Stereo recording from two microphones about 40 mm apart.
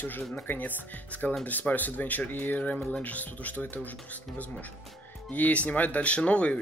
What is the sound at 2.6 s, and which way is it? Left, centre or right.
Speech, left.